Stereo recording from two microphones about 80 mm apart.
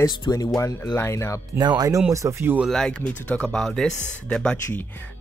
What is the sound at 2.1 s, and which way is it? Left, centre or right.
Speech, right.